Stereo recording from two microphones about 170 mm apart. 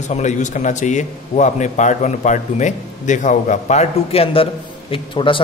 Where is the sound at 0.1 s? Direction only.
45° left (ahead or behind).